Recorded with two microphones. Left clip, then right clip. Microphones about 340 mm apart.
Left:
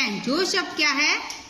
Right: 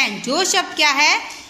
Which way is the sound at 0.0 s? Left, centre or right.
Centre.